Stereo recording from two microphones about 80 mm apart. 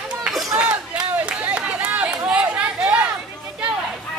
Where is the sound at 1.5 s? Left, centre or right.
Centre.